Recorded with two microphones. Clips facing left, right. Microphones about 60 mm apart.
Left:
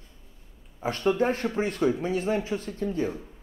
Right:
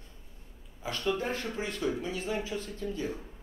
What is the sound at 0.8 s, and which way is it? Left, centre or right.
Speech, left.